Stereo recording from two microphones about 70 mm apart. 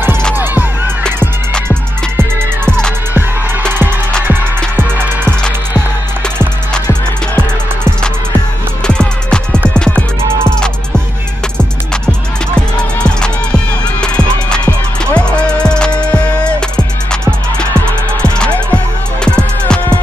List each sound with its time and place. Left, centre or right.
0.3 s music: right
2.1 s music: right
4.7 s music: right
8.8 s music: centre
12.1 s music: centre
19.2 s music: centre